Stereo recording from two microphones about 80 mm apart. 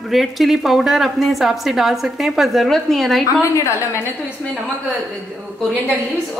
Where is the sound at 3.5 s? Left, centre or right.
Left.